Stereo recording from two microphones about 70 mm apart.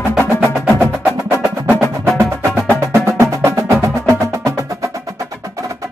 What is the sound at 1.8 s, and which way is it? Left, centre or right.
Wood block, right.